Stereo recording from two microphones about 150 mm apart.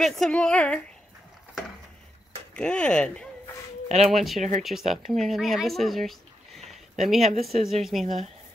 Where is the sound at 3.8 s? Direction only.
45° right (ahead or behind).